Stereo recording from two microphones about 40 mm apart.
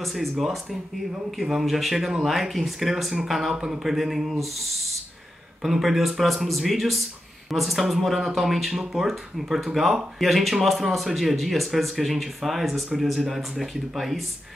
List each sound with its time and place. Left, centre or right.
0.0 s speech: centre
3.5 s speech: centre
3.8 s speech: centre